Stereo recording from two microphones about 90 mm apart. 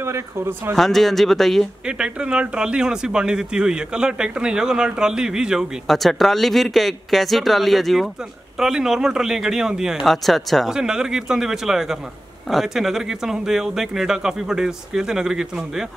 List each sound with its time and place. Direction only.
0.0 s speech: 25° right (ahead or behind)
0.7 s speech: centre (ahead or behind)
1.9 s speech: 10° right (ahead or behind)